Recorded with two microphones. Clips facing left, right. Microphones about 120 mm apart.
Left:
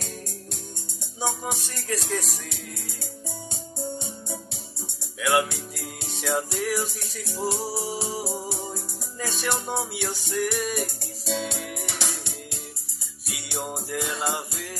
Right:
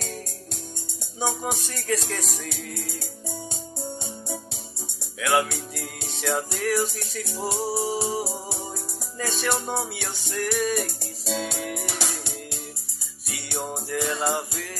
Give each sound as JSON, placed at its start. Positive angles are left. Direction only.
{"t": 1.2, "sound": "music", "side_deg": 0}
{"t": 5.2, "sound": "music", "side_deg": 0}
{"t": 13.3, "sound": "music", "side_deg": 5}